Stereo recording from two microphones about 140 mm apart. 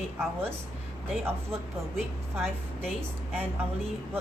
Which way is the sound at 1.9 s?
Centre (ahead or behind).